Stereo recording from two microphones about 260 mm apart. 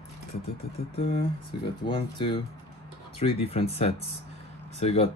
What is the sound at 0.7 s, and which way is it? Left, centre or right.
Speech, left.